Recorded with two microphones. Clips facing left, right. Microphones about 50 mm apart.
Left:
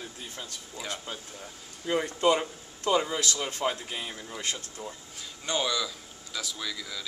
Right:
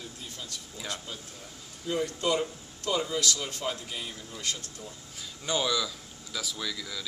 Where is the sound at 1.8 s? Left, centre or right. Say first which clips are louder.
Left 4 dB; left.